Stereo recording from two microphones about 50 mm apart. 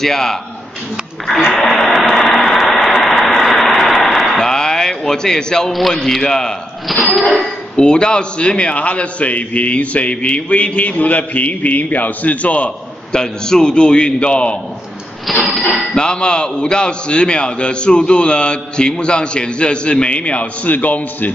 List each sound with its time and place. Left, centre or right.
0.0 s a man's voice: centre
1.5 s a sound: centre
5.7 s a man's voice: centre
7.8 s a man's voice: centre
15.3 s a man's voice: centre
15.6 s a man's voice: centre; by 21.3 s left